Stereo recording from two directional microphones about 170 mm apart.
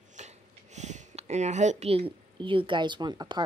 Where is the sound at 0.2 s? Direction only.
45° right (ahead or behind).